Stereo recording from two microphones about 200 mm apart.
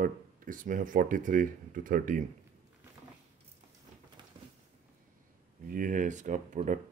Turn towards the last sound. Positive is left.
turn(degrees=-40)  # may be behind; listen again after turning